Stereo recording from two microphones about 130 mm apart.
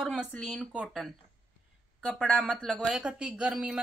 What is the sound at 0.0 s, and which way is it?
Speech, 5° left (ahead or behind).